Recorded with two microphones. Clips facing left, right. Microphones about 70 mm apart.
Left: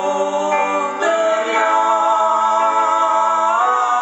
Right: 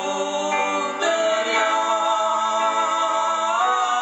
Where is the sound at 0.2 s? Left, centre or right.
Centre.